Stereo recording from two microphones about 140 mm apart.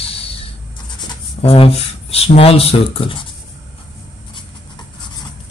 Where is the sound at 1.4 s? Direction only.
45° left (ahead or behind).